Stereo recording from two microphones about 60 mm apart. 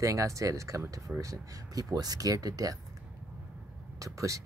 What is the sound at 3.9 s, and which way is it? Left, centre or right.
Speech, right.